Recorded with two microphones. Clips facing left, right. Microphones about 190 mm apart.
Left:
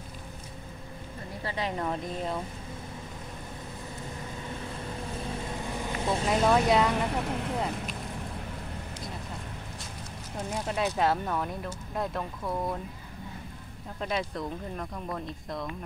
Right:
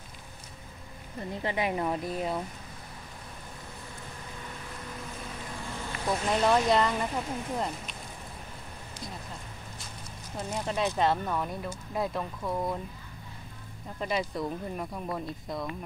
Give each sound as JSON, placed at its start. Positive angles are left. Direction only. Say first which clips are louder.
{"t": 1.4, "sound": "speech", "louder": "right 2 dB", "side_deg": -15}
{"t": 5.7, "sound": "vehicle", "louder": "left 1 dB", "side_deg": 20}
{"t": 6.2, "sound": "speech", "louder": "left 1 dB", "side_deg": 5}
{"t": 7.1, "sound": "speech", "louder": "left 2 dB", "side_deg": 65}
{"t": 7.5, "sound": "speech", "louder": "left 1 dB", "side_deg": 0}
{"t": 10.5, "sound": "speech", "louder": "even", "side_deg": 0}
{"t": 13.9, "sound": "speech", "louder": "right 1 dB", "side_deg": -5}